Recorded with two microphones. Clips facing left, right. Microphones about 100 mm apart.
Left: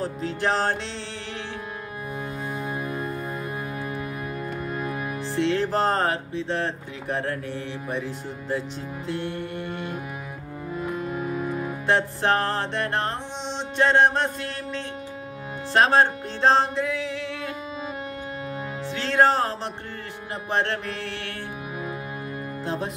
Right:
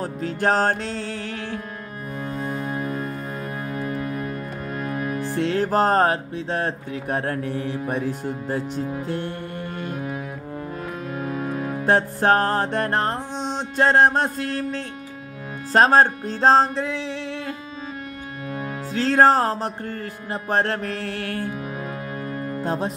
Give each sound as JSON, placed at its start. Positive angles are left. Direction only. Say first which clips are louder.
{"t": 0.0, "sound": "music", "louder": "right 3 dB", "side_deg": -50}
{"t": 2.4, "sound": "organ", "louder": "right 4 dB", "side_deg": 5}
{"t": 4.7, "sound": "music", "louder": "right 7 dB", "side_deg": 10}
{"t": 5.3, "sound": "music", "louder": "right 1 dB", "side_deg": -45}
{"t": 11.8, "sound": "music", "louder": "right 4 dB", "side_deg": -45}
{"t": 18.9, "sound": "music", "louder": "right 4 dB", "side_deg": -40}
{"t": 22.6, "sound": "speech", "louder": "right 4 dB", "side_deg": -40}